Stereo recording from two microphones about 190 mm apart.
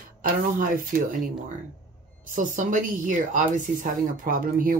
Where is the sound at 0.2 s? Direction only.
45° right (ahead or behind).